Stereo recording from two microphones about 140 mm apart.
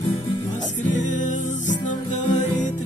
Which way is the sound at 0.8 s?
60° left (ahead or behind).